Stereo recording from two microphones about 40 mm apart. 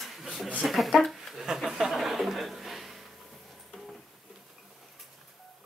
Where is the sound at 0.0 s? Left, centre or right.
Centre.